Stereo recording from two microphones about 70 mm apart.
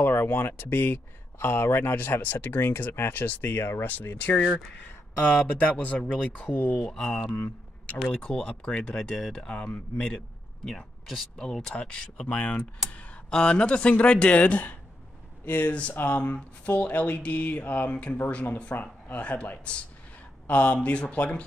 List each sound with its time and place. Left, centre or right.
0.0 s speech: left
5.6 s speech: centre
8.2 s speech: centre
10.7 s speech: centre
12.9 s a sound: left
13.3 s speech: centre; by 16.2 s left
16.2 s speech: centre